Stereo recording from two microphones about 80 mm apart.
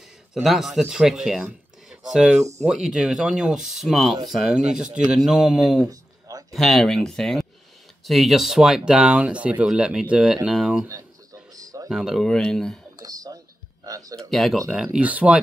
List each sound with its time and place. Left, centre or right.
0.3 s speech: centre
5.9 s a sound: right
6.5 s speech: centre
11.9 s speech: centre
12.3 s speech: centre
13.0 s a sound: right
14.1 s speech: centre
14.7 s speech: centre